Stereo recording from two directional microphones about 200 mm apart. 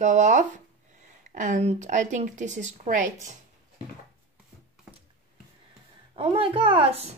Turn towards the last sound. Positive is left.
turn(degrees=-30)  # may be behind; listen again after turning